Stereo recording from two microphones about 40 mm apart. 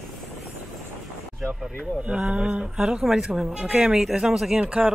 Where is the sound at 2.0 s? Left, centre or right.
Right.